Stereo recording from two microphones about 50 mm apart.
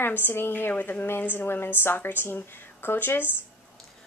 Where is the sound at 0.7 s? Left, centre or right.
Left.